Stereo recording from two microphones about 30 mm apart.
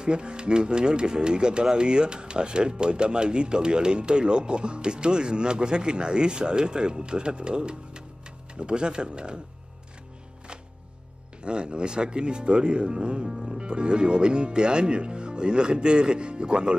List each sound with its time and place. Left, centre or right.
0.0 s speech: right
11.4 s speech: right